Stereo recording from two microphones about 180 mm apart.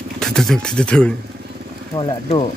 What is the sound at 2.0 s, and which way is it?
Speech, 30° left (ahead or behind).